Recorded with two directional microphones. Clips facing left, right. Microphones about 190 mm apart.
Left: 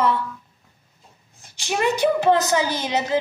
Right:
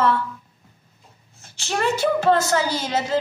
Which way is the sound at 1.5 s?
15° left (ahead or behind).